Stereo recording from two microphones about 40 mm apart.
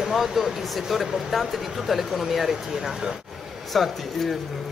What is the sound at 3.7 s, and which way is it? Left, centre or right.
Speech, centre.